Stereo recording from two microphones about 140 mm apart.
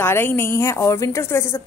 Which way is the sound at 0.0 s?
15° left (ahead or behind).